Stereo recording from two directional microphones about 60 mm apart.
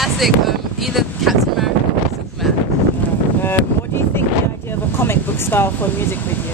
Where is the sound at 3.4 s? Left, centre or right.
Left.